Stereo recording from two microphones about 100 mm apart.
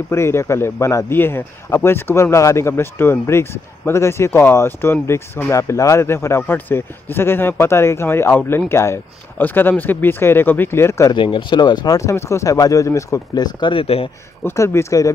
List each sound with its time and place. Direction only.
0.1 s speech: 25° left (ahead or behind)
11.1 s speech: 50° left (ahead or behind); by 13.2 s 30° left (ahead or behind)
13.3 s speech: 45° left (ahead or behind)
14.4 s speech: 25° left (ahead or behind)